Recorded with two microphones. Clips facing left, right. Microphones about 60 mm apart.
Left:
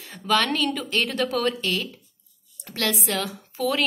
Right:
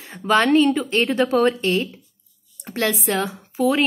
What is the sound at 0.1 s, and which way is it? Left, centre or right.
A woman's voice, right.